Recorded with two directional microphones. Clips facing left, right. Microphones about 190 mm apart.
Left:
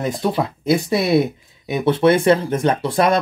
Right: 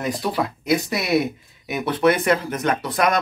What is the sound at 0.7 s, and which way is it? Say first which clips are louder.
Speech: left 5 dB; 25° left (ahead or behind).